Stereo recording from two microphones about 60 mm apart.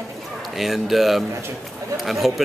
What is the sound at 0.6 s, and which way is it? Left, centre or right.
Speech, centre.